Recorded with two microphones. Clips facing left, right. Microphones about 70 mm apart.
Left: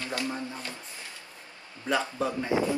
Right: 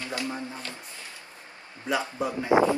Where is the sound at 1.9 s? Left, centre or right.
Centre.